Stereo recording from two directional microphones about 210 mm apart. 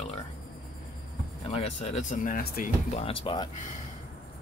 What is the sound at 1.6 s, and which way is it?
Speech, 30° left (ahead or behind).